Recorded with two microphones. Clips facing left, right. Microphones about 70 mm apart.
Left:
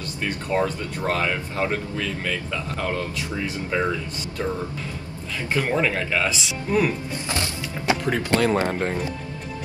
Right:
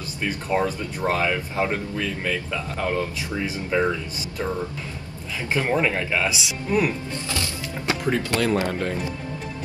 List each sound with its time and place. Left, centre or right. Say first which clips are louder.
0.2 s speech: even; centre
3.2 s speech: even; centre
5.5 s speech: even; centre
7.9 s speech: left 2 dB; left
8.5 s speech: left 1 dB; left